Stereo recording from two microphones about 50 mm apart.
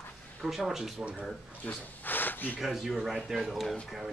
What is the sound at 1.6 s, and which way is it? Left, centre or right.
Speech, left.